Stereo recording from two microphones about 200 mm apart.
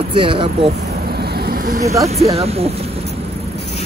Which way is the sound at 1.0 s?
55° right (ahead or behind).